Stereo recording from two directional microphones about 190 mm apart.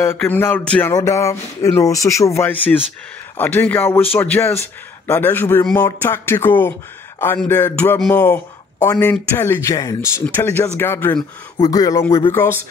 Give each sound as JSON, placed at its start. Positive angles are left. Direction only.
{"t": 0.0, "sound": "music", "side_deg": 10}
{"t": 11.5, "sound": "speech", "side_deg": 20}
{"t": 12.3, "sound": "music", "side_deg": 10}